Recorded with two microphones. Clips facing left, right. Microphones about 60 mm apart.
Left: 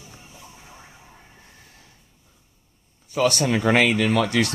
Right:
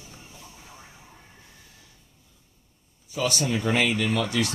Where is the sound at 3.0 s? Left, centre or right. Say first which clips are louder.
Left 6 dB; left.